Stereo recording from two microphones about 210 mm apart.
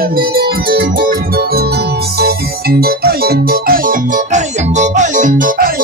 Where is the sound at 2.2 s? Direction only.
45° right (ahead or behind).